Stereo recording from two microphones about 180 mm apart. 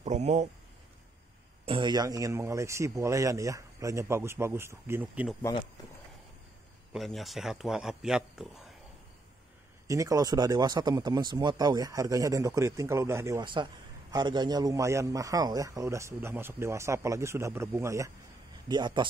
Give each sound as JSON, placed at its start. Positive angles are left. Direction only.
{"t": 0.0, "sound": "speech", "side_deg": -40}
{"t": 1.7, "sound": "a man's voice", "side_deg": -25}
{"t": 6.9, "sound": "speech", "side_deg": 0}
{"t": 9.8, "sound": "a man's voice", "side_deg": -20}